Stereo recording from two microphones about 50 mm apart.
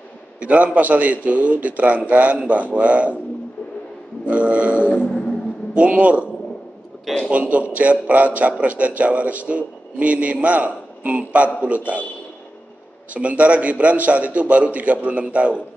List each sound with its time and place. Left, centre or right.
0.4 s a man's voice: right
4.3 s a man's voice: right
4.8 s a sound: left
5.8 s a man's voice: right
7.2 s a man's voice: right
13.1 s a man's voice: right